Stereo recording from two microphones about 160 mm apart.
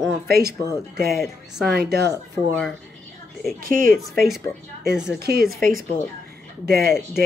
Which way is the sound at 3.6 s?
60° right (ahead or behind).